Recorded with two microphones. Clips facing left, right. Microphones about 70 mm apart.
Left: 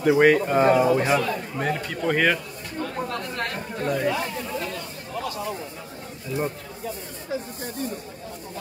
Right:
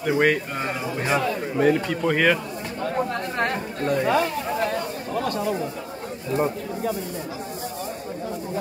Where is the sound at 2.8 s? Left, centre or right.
Right.